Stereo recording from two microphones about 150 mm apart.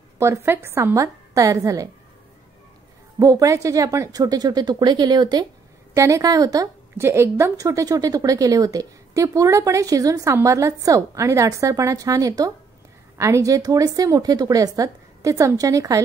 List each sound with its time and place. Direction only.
0.2 s a woman's voice: 15° right (ahead or behind)
3.2 s a woman's voice: 20° right (ahead or behind)